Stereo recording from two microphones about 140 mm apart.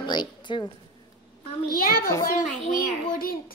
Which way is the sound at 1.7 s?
90° left.